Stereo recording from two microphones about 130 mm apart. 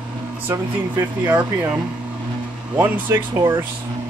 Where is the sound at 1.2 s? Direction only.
15° right (ahead or behind).